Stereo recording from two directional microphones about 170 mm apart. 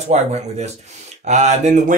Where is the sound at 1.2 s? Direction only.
45° right (ahead or behind).